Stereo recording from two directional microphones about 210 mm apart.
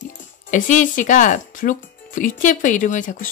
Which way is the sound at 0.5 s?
35° left (ahead or behind).